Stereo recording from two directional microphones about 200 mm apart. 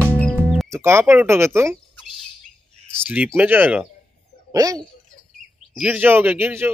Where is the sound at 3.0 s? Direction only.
10° right (ahead or behind).